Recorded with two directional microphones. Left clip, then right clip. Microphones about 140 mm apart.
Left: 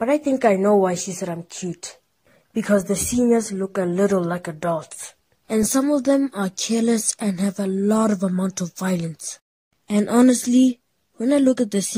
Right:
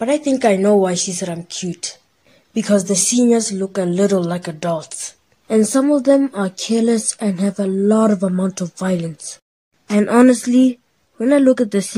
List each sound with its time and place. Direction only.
0.2 s a woman's voice: 25° left (ahead or behind)
0.5 s a woman's voice: 10° left (ahead or behind)
3.3 s speech: centre (ahead or behind)
3.5 s a woman's voice: 20° left (ahead or behind)
5.5 s speech: 45° left (ahead or behind)